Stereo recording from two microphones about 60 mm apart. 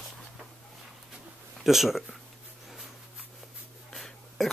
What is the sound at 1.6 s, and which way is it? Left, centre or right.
Speech, centre.